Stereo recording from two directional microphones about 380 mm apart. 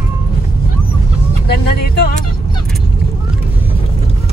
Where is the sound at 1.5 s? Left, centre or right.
Left.